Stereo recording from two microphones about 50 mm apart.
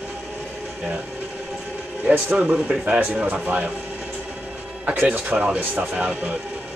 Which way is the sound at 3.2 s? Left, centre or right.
Right.